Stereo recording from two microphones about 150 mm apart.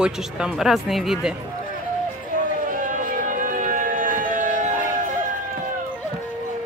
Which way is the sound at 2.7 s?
65° right (ahead or behind).